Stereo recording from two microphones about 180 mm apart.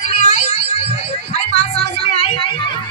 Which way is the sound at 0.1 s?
35° left (ahead or behind).